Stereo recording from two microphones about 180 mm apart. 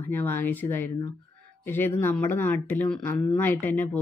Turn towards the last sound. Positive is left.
turn(degrees=10)  # may be behind; listen again after turning